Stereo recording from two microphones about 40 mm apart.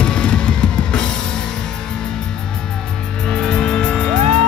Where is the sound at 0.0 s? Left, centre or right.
Left.